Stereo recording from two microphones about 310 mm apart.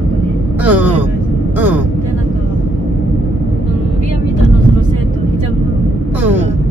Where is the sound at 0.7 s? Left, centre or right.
Centre.